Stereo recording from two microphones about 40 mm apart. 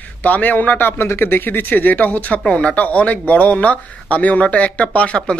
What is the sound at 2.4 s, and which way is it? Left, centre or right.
Speech, left.